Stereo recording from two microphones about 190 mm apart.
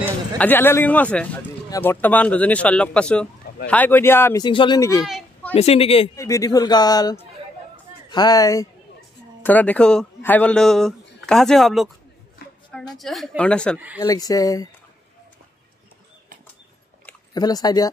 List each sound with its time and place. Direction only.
0.4 s speech: 10° left (ahead or behind)
5.0 s a sound: centre (ahead or behind)
5.5 s speech: 30° left (ahead or behind)
6.1 s a man's voice: 15° left (ahead or behind); by 11.9 s centre (ahead or behind)
12.9 s speech: centre (ahead or behind)
13.7 s speech: 10° right (ahead or behind)
14.0 s a man's voice: 20° left (ahead or behind)
17.3 s speech: 20° left (ahead or behind)